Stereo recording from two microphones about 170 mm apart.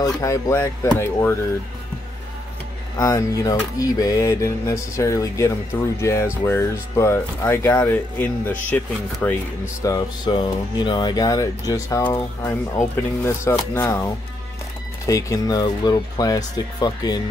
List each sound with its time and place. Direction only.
0.0 s speech: 20° left (ahead or behind)
3.0 s speech: 20° left (ahead or behind)
9.8 s speech: 25° left (ahead or behind)